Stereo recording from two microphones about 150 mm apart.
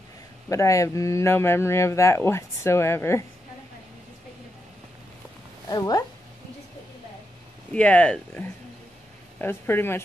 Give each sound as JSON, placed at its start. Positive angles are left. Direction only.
{"t": 0.5, "sound": "speech", "side_deg": 20}
{"t": 5.7, "sound": "speech", "side_deg": 25}
{"t": 7.7, "sound": "speech", "side_deg": 10}